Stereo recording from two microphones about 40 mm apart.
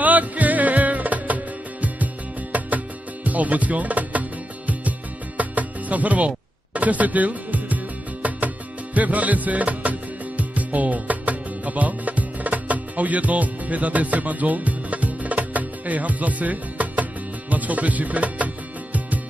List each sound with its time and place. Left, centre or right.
0.0 s music: right
3.3 s music: right